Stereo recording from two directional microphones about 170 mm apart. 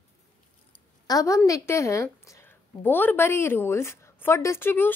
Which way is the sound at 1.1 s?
20° left (ahead or behind).